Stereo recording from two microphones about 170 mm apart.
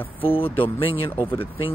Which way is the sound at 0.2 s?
30° left (ahead or behind).